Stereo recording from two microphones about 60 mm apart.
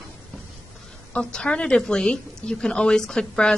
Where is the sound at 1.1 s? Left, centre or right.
Centre.